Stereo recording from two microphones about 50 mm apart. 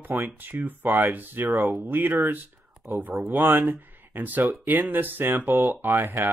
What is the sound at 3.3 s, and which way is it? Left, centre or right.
Speech, right.